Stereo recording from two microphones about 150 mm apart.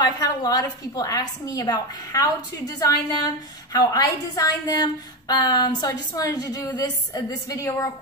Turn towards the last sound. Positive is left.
turn(degrees=20)  # may be behind; listen again after turning